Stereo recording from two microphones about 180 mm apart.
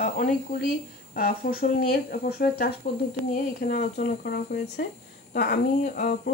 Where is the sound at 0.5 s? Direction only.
45° left (ahead or behind).